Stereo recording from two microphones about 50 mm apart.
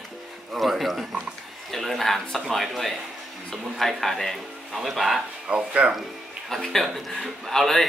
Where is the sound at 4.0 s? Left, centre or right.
Centre.